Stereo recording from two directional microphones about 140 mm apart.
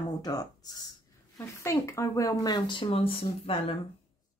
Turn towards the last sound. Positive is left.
turn(degrees=40)  # may be behind; listen again after turning